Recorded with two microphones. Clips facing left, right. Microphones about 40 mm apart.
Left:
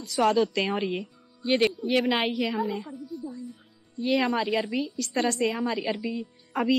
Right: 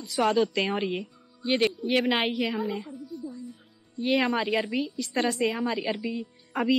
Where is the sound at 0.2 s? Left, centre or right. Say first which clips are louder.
Left 1 dB; right.